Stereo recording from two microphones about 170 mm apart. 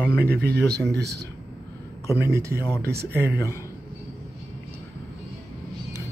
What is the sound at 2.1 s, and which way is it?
Speech, 15° right (ahead or behind).